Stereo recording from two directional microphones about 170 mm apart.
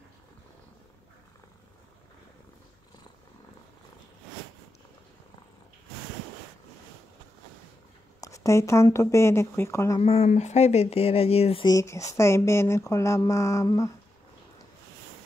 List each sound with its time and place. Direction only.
8.2 s speech: 20° left (ahead or behind)
9.9 s speech: 35° left (ahead or behind)
11.7 s speech: 20° left (ahead or behind)